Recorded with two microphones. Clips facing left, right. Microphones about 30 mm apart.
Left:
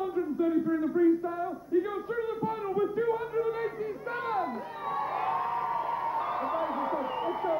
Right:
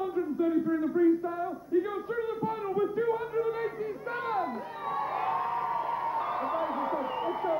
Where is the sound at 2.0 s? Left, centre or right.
Centre.